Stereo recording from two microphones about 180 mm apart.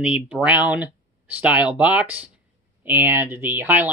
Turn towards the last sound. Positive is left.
turn(degrees=-10)  # may be behind; listen again after turning